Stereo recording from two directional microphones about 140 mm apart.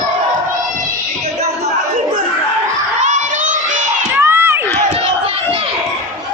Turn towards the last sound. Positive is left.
turn(degrees=-15)  # may be behind; listen again after turning